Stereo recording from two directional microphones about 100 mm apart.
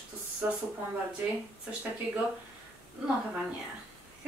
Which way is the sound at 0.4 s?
25° right (ahead or behind).